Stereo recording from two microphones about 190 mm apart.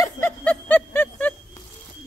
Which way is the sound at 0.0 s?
10° left (ahead or behind).